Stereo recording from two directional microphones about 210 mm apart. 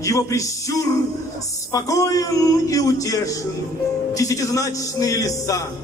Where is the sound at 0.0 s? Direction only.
15° left (ahead or behind).